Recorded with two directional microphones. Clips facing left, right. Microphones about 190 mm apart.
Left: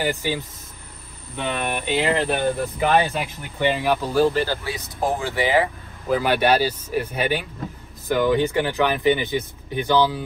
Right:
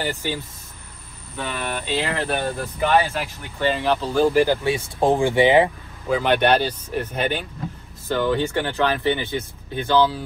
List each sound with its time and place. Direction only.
0.0 s speech: 15° left (ahead or behind)
4.3 s speech: 15° right (ahead or behind)
4.6 s speech: 25° right (ahead or behind)
6.0 s speech: 5° left (ahead or behind)